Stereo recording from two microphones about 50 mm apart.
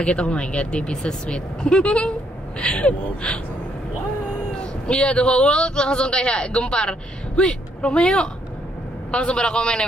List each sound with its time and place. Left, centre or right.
0.0 s a man's voice: left
4.6 s a man's voice: left